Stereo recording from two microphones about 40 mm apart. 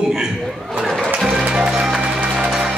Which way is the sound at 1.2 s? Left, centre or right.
Centre.